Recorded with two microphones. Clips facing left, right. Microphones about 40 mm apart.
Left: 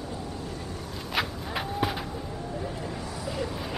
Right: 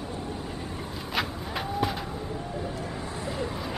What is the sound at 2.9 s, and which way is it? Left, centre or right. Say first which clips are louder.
Vehicle: right 1 dB; right.